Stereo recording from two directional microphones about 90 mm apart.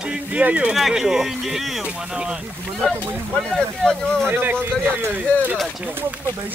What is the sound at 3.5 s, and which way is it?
Speech, 5° left (ahead or behind).